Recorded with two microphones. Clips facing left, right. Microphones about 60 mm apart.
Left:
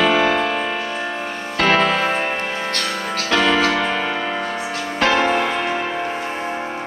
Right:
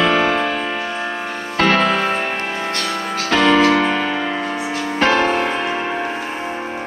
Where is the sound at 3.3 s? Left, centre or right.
Right.